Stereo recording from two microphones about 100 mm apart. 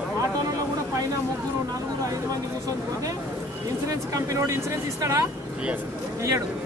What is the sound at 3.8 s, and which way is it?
Speech, 30° right (ahead or behind).